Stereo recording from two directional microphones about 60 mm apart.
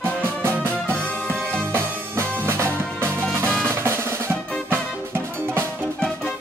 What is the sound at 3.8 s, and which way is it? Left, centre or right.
Drum, right.